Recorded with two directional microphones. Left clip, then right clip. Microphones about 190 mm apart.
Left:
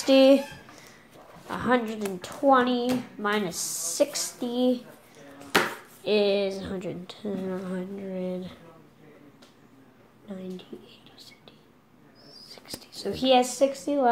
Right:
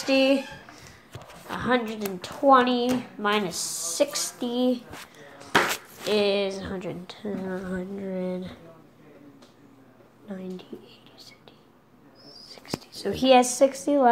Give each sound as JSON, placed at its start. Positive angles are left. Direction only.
{"t": 0.0, "sound": "a sound", "side_deg": 20}
{"t": 1.5, "sound": "a woman's voice", "side_deg": 10}
{"t": 6.0, "sound": "a woman's voice", "side_deg": 5}
{"t": 10.2, "sound": "a woman's voice", "side_deg": 0}
{"t": 12.3, "sound": "whispering", "side_deg": 0}
{"t": 13.1, "sound": "speech", "side_deg": -15}